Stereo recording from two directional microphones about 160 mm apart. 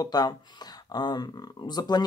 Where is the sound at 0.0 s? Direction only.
25° left (ahead or behind).